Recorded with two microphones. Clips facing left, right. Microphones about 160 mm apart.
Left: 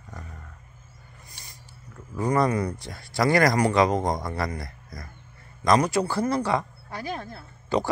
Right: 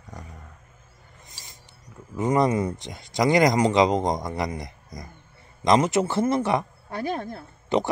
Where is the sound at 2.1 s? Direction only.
20° right (ahead or behind).